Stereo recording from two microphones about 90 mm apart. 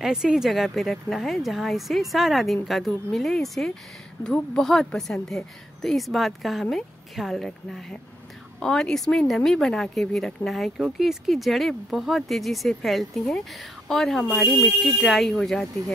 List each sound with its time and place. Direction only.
0.0 s speech: 5° right (ahead or behind)